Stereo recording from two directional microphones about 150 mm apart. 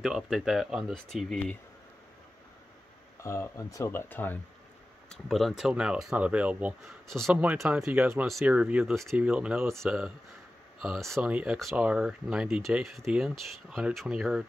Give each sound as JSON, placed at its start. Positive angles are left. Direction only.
{"t": 0.0, "sound": "speech", "side_deg": 0}
{"t": 3.2, "sound": "speech", "side_deg": 20}
{"t": 5.1, "sound": "speech", "side_deg": 0}
{"t": 7.1, "sound": "speech", "side_deg": 0}